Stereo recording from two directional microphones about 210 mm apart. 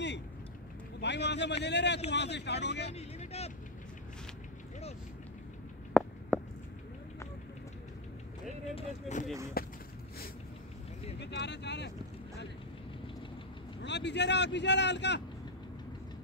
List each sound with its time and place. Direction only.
1.0 s speech: 55° left (ahead or behind)
2.9 s vehicle: 30° left (ahead or behind)
6.0 s a sound: centre (ahead or behind)
8.7 s speech: 35° left (ahead or behind)
9.6 s a sound: 45° left (ahead or behind)
11.1 s speech: 55° left (ahead or behind)
13.8 s speech: 55° left (ahead or behind)